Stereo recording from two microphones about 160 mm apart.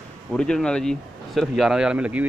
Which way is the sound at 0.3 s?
5° left (ahead or behind).